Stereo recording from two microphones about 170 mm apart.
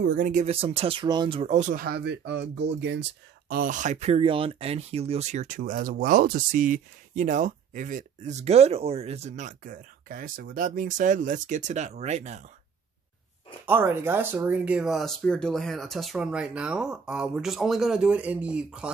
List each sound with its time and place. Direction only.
0.0 s speech: 60° right (ahead or behind); by 12.4 s 40° right (ahead or behind)
13.7 s speech: 15° right (ahead or behind)